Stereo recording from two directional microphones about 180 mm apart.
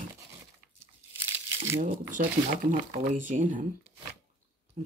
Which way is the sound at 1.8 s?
45° right (ahead or behind).